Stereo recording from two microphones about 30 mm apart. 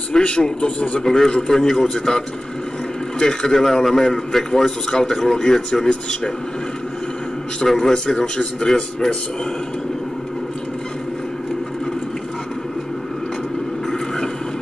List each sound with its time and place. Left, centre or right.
0.2 s a man's voice: left
1.0 s a man's voice: centre
7.6 s a man's voice: centre
7.9 s a man's voice: left